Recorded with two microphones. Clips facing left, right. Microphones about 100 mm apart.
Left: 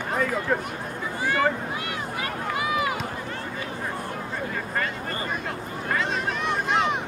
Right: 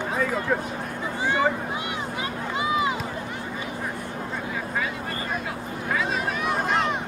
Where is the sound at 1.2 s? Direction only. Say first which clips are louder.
Even; 20° right (ahead or behind).